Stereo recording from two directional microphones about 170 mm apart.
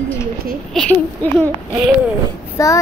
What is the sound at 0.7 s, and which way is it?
Speech, 10° left (ahead or behind).